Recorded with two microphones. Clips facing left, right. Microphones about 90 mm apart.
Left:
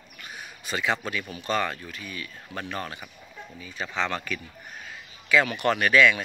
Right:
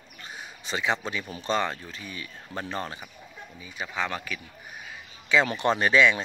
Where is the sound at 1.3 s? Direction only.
25° right (ahead or behind).